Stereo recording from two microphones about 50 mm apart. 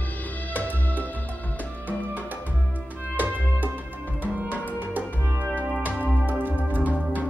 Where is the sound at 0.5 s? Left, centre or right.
Left.